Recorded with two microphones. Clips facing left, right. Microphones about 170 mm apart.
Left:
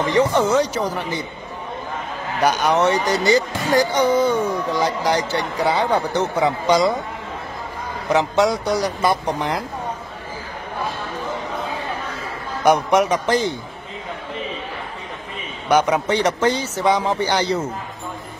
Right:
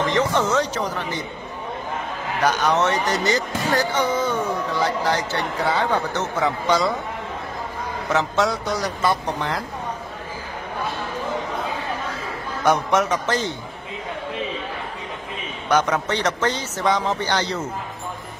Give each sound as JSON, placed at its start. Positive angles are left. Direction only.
{"t": 0.0, "sound": "speech", "side_deg": 10}
{"t": 2.4, "sound": "speech", "side_deg": 10}
{"t": 8.1, "sound": "speech", "side_deg": 15}
{"t": 12.6, "sound": "speech", "side_deg": 15}
{"t": 15.7, "sound": "speech", "side_deg": 10}